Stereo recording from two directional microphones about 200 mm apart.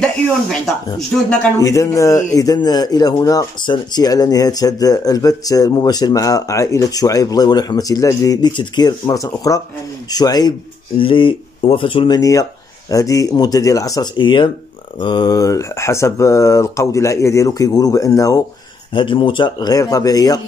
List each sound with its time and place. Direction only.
0.0 s speech: 5° left (ahead or behind)
1.6 s speech: 15° left (ahead or behind)